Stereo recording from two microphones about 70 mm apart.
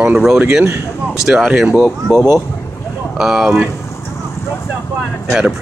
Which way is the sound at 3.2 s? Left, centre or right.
Centre.